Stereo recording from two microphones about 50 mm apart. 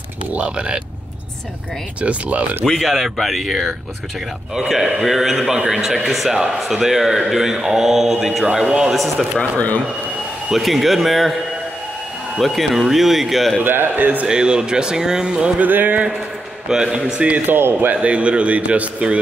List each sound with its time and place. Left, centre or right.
0.3 s a man's voice: right
2.0 s a man's voice: right
2.6 s speech: centre
9.4 s speech: left
10.5 s speech: centre
12.4 s speech: centre
13.6 s speech: right
14.2 s speech: centre
15.6 s speech: right
16.6 s speech: centre
17.5 s speech: right
17.9 s a man's voice: right